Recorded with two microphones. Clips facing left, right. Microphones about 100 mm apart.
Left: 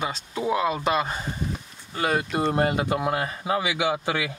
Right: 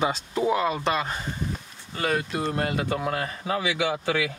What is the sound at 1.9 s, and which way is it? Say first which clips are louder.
Speech: left 2 dB; 15° left (ahead or behind).